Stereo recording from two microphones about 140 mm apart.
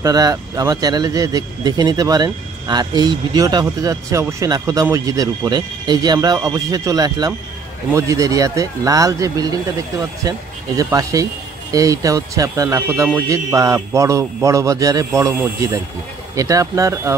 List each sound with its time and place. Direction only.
0.0 s speech: 25° right (ahead or behind)